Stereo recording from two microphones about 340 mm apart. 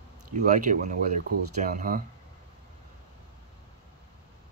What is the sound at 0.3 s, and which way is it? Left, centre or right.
Speech, right.